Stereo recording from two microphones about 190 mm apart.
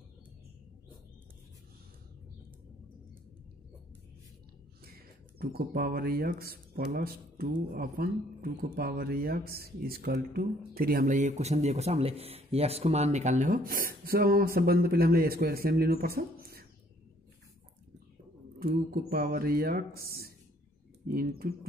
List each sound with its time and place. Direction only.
4.8 s speech: 55° right (ahead or behind)
18.6 s speech: 55° right (ahead or behind)